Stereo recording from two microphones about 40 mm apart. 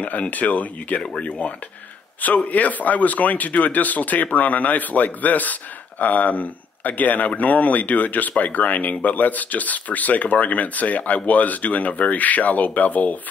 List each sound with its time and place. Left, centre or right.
0.0 s speech: left
2.2 s speech: left